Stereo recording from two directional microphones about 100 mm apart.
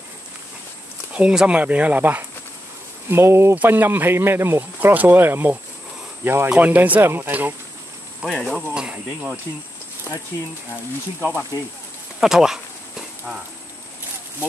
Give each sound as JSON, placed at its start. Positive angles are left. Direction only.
{"t": 1.1, "sound": "speech", "side_deg": -10}
{"t": 11.5, "sound": "speech", "side_deg": 40}
{"t": 12.2, "sound": "speech", "side_deg": -5}